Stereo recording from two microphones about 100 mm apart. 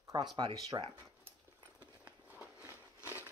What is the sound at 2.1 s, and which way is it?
Walk, 10° right (ahead or behind).